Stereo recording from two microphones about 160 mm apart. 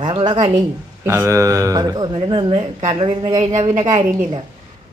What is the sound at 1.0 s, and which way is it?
Speech, 15° right (ahead or behind).